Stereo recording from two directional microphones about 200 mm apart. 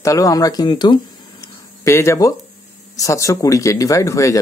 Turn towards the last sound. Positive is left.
turn(degrees=15)  # may be behind; listen again after turning